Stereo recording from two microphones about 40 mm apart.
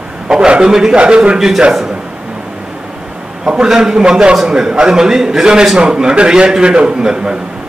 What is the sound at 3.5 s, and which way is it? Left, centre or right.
A man's voice, centre.